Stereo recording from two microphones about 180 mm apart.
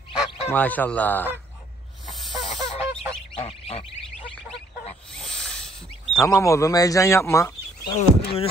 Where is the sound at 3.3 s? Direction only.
30° left (ahead or behind).